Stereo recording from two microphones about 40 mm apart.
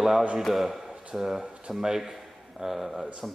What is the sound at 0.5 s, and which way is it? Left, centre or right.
A man's voice, centre.